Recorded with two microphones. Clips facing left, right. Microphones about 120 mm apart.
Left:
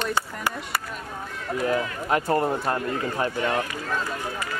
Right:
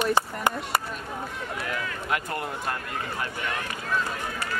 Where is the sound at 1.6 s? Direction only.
30° left (ahead or behind).